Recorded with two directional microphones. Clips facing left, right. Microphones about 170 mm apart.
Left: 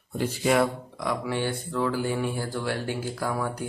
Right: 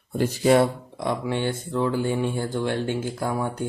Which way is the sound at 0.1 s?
40° right (ahead or behind).